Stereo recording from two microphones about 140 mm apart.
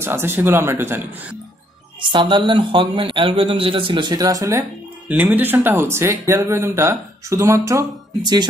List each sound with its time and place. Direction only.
0.0 s speech: 15° right (ahead or behind)
2.0 s speech: 35° right (ahead or behind)
5.0 s speech: 10° right (ahead or behind); by 8.5 s 30° right (ahead or behind)